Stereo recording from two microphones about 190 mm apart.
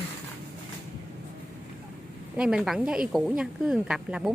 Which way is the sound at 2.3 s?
5° right (ahead or behind).